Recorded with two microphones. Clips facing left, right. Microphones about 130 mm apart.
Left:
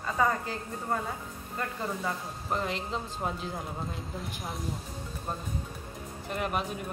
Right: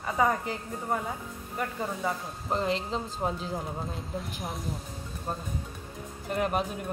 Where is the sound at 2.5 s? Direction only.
30° right (ahead or behind).